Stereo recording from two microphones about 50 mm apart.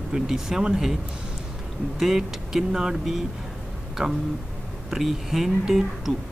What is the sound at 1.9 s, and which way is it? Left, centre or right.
Speech, centre.